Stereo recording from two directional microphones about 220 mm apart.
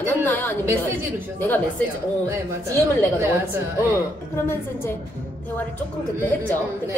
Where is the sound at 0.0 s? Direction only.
10° left (ahead or behind).